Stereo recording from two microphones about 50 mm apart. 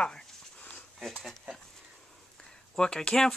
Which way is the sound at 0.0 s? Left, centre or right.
Left.